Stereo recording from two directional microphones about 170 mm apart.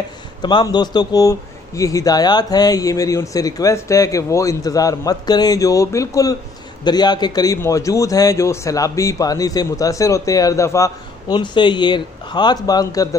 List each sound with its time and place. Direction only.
0.4 s a man's voice: 25° left (ahead or behind)